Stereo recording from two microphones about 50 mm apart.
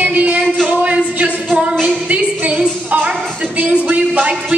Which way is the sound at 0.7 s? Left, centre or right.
Right.